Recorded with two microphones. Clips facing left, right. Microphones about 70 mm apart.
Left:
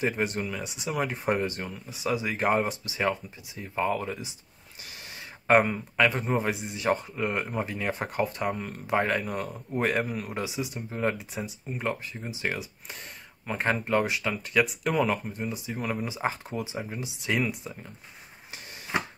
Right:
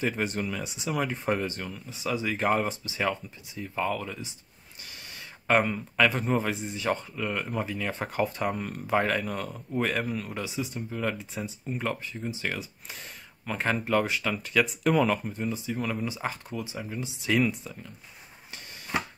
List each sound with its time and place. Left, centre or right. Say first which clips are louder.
0.1 s speech: left 1 dB; centre; by 4.3 s left
5.5 s speech: left 3 dB; centre
6.0 s speech: even; centre; by 7.9 s left
7.9 s speech: even; centre
10.9 s speech: left 2 dB; left
11.4 s speech: right 1 dB; centre
11.9 s speech: right 1 dB; centre
17.6 s speech: left 2 dB; left